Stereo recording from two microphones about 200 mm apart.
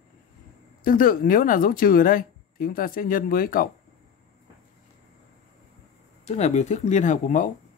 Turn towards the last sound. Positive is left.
turn(degrees=40)  # may be behind; listen again after turning